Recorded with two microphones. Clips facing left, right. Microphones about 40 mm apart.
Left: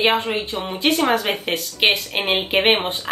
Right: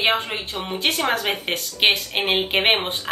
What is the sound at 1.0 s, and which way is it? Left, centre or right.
Speech, centre.